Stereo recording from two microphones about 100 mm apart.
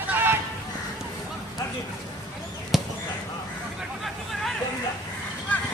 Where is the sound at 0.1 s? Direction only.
20° right (ahead or behind).